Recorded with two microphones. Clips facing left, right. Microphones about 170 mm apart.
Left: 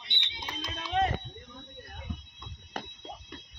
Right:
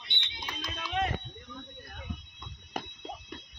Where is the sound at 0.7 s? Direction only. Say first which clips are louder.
Left 3 dB; 30° left (ahead or behind).